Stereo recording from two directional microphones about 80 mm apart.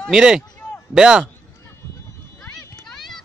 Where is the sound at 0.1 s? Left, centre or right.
Centre.